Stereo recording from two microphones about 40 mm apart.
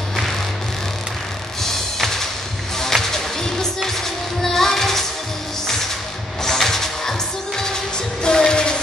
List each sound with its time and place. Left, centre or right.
1.6 s music: centre
6.4 s music: centre